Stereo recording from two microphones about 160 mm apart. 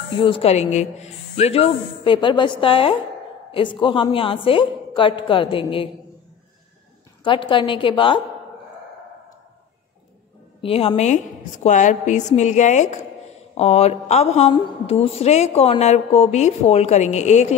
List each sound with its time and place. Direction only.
0.2 s speech: 35° left (ahead or behind)
7.2 s speech: 30° left (ahead or behind)
10.6 s a woman's voice: 35° left (ahead or behind)